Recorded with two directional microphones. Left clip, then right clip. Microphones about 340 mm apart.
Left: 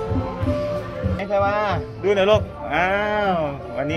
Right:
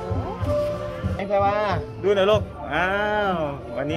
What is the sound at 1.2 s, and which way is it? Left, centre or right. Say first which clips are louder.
Speech: left 1 dB; centre.